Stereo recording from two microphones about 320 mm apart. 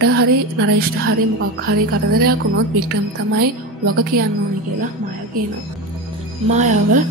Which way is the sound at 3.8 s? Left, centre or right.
Right.